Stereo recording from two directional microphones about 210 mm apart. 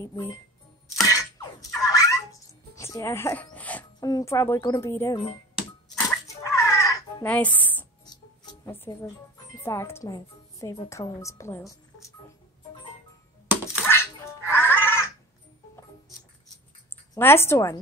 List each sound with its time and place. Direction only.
0.0 s speech: 15° left (ahead or behind)
1.0 s a sound: 15° left (ahead or behind)
2.7 s speech: 15° left (ahead or behind)
6.0 s a sound: 15° left (ahead or behind)
8.6 s speech: 10° left (ahead or behind)
13.8 s music: 10° left (ahead or behind)
17.1 s speech: 10° left (ahead or behind)